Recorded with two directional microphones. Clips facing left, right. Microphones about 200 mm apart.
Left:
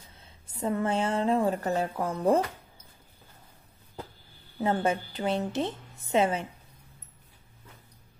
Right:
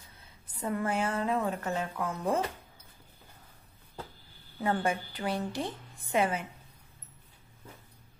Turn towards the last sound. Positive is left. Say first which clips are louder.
# left 3 dB
turn(degrees=25)  # may be behind; listen again after turning